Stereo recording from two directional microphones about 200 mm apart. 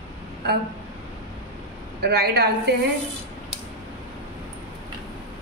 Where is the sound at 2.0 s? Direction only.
55° right (ahead or behind).